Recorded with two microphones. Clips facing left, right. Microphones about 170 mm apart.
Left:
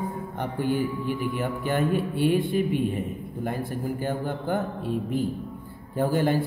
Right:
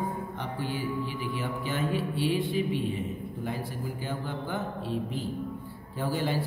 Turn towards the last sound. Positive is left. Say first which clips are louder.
# left 7 dB
turn(degrees=50)  # may be behind; listen again after turning